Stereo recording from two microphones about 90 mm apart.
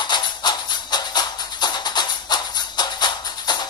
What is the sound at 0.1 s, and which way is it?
Music, 55° left (ahead or behind).